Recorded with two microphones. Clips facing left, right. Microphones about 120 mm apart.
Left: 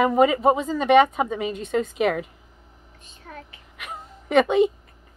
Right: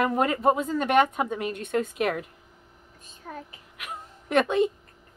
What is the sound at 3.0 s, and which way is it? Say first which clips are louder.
Speech: right 2 dB; 35° right (ahead or behind).